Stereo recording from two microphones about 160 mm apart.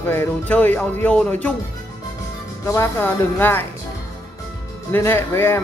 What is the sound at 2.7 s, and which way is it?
Speech, 15° left (ahead or behind).